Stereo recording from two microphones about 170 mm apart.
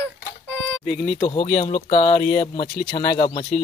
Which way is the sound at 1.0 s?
30° left (ahead or behind).